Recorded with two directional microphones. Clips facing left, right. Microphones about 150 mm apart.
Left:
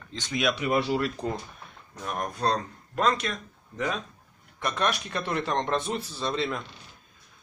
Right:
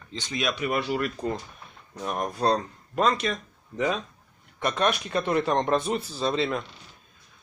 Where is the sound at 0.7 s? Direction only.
25° left (ahead or behind).